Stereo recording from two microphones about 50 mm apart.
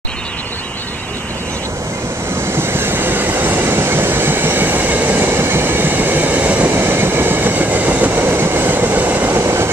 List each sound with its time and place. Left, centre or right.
2.5 s train: right
6.7 s train: right
8.1 s train: right
9.4 s train: right